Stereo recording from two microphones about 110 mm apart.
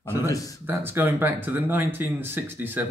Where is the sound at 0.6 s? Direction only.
20° right (ahead or behind).